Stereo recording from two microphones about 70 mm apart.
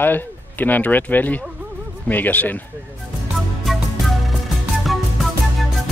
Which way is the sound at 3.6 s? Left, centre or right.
Centre.